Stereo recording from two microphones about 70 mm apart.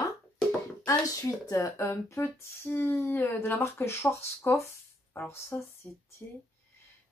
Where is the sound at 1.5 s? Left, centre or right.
Left.